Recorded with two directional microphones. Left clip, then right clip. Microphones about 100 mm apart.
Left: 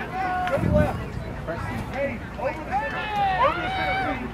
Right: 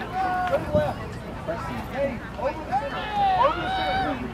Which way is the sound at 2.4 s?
10° right (ahead or behind).